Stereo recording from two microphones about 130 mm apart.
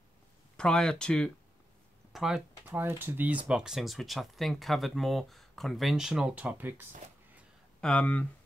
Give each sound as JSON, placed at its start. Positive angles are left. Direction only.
{"t": 0.6, "sound": "speech", "side_deg": 5}
{"t": 2.6, "sound": "speech", "side_deg": -20}
{"t": 7.8, "sound": "speech", "side_deg": 10}